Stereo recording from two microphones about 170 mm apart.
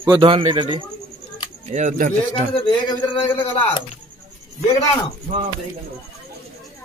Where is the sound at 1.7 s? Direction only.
45° right (ahead or behind).